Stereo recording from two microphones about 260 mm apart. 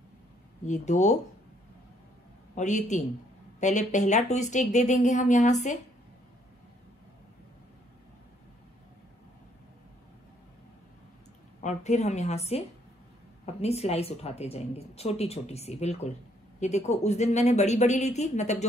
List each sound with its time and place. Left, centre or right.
0.7 s speech: left
2.5 s speech: left
11.6 s speech: left